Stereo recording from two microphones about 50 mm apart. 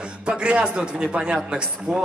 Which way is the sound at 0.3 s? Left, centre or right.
Right.